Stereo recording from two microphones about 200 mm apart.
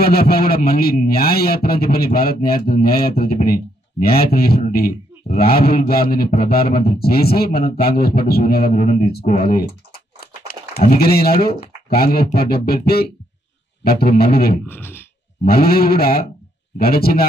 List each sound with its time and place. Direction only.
0.0 s a man's voice: 50° left (ahead or behind)
10.9 s a man's voice: 50° left (ahead or behind)
14.7 s speech: 10° left (ahead or behind)
15.4 s a man's voice: 50° left (ahead or behind)